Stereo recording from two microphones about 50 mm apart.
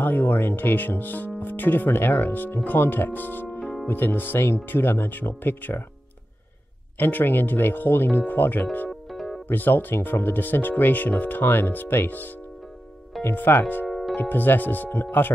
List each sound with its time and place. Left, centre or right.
0.0 s speech: left
7.0 s speech: left
9.1 s music: centre
9.5 s speech: left
13.8 s music: centre
14.3 s speech: left